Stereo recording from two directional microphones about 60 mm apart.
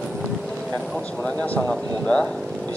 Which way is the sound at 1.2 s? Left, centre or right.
Left.